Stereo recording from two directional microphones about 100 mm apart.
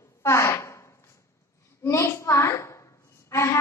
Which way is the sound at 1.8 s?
30° left (ahead or behind).